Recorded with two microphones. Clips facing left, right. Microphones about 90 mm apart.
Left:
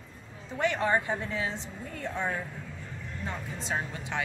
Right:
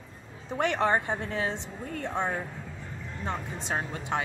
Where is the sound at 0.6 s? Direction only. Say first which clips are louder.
Right 1 dB; 60° right (ahead or behind).